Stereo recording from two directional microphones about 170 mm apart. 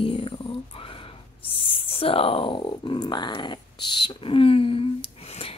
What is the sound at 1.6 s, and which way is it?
Speech, 35° left (ahead or behind).